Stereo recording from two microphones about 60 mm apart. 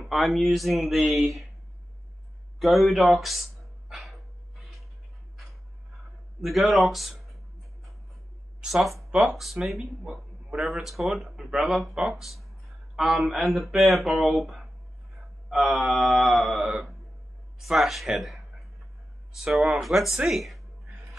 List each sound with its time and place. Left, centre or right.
0.0 s speech: centre
2.6 s speech: centre
3.9 s dog: centre
6.4 s speech: centre
8.6 s speech: centre
15.1 s mantra: centre
17.6 s speech: centre
18.2 s a sound: centre
19.3 s speech: centre